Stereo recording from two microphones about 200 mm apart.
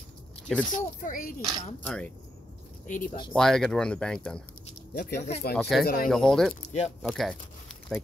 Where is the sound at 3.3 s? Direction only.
Centre (ahead or behind).